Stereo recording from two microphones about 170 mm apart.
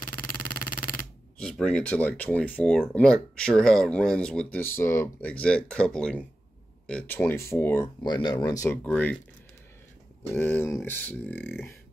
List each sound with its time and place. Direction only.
0.0 s music: 55° left (ahead or behind)
1.4 s speech: 5° left (ahead or behind)
8.0 s speech: 25° left (ahead or behind)
8.8 s speech: 10° left (ahead or behind)
10.3 s speech: 10° left (ahead or behind)